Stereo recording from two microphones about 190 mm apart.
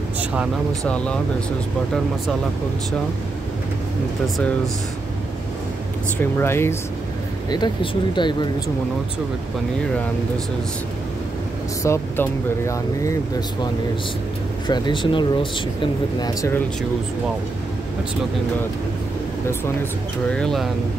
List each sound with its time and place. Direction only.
0.2 s vehicle: 5° right (ahead or behind)
0.8 s speech: 5° left (ahead or behind)
6.3 s speech: 15° left (ahead or behind)
11.8 s speech: 15° left (ahead or behind)
14.7 s speech: 25° left (ahead or behind)
19.8 s speech: 5° left (ahead or behind)